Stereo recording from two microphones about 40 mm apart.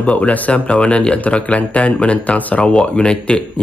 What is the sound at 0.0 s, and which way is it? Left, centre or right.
Speech, left.